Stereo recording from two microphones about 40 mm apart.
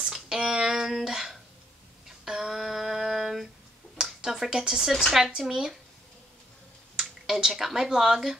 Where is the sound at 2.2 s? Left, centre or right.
Centre.